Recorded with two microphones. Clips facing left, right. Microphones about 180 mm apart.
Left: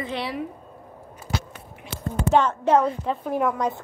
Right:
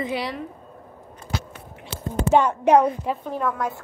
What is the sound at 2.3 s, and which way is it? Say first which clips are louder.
Speech: right 2 dB; 10° right (ahead or behind).